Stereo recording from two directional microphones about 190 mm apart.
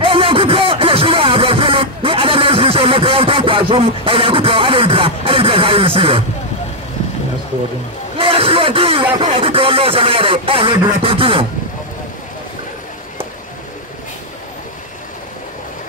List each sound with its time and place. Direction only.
0.0 s music: 30° right (ahead or behind)
8.2 s a sound: 30° right (ahead or behind)
9.2 s speech: 30° right (ahead or behind)